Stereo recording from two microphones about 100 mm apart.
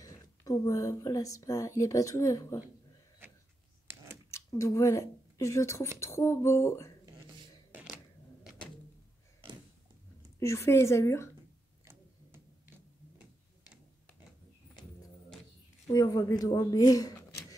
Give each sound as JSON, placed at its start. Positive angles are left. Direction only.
{"t": 0.0, "sound": "speech", "side_deg": 35}
{"t": 4.6, "sound": "a woman's voice", "side_deg": 30}
{"t": 10.4, "sound": "a woman's voice", "side_deg": 30}
{"t": 11.8, "sound": "a sound", "side_deg": -25}
{"t": 15.9, "sound": "speech", "side_deg": 35}